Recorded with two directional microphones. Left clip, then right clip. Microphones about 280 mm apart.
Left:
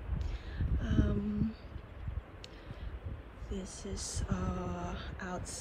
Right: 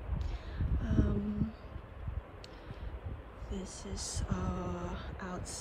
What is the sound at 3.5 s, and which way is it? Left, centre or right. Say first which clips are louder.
Speech: left 1 dB; centre.